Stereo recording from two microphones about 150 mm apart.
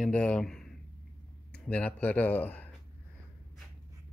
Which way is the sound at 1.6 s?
10° left (ahead or behind).